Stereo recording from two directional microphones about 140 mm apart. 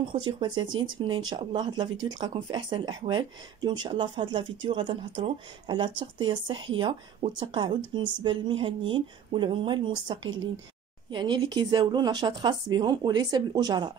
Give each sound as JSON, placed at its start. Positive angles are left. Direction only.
{"t": 0.1, "sound": "speech", "side_deg": -35}